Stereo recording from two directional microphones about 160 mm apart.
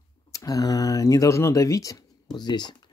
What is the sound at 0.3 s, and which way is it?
Speech, 20° left (ahead or behind).